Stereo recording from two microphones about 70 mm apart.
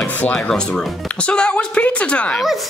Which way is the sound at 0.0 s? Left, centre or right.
Left.